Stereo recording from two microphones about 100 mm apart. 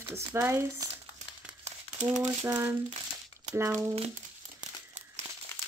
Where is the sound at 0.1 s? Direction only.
25° right (ahead or behind).